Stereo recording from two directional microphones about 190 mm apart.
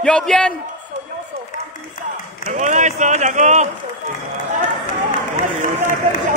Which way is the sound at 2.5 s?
40° right (ahead or behind).